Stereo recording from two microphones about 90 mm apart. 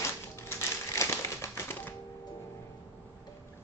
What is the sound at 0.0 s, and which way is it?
Typewriter, 30° left (ahead or behind).